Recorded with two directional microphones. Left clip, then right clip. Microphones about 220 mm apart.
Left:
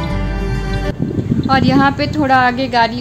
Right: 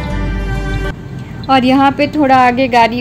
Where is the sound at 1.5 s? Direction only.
5° right (ahead or behind).